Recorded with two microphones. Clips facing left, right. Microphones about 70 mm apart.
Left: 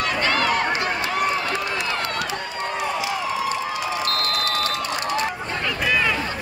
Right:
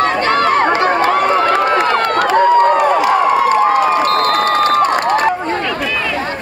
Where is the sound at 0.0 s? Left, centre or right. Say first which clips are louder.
Right 9 dB; right.